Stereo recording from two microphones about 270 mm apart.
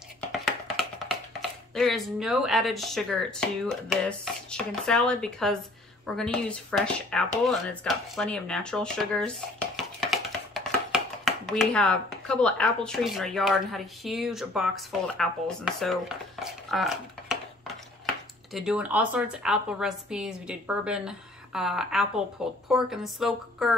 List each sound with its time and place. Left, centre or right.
1.7 s speech: centre
18.5 s speech: centre